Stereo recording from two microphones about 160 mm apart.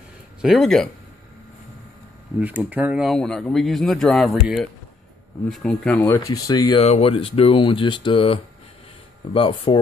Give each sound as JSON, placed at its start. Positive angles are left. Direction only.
{"t": 0.4, "sound": "speech", "side_deg": 0}
{"t": 2.3, "sound": "speech", "side_deg": -10}
{"t": 5.9, "sound": "speech", "side_deg": 20}
{"t": 6.8, "sound": "speech", "side_deg": 40}